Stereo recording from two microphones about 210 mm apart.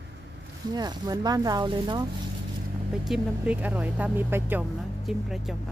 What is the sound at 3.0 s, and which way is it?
Speech, 5° right (ahead or behind).